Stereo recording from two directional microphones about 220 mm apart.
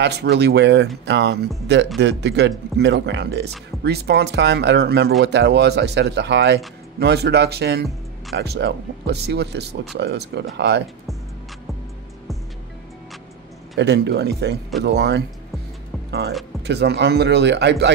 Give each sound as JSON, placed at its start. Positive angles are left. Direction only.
{"t": 0.0, "sound": "speech", "side_deg": -50}
{"t": 13.7, "sound": "speech", "side_deg": -50}